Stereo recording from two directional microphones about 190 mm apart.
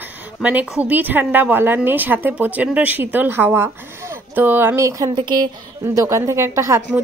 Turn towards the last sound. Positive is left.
turn(degrees=-15)  # may be behind; listen again after turning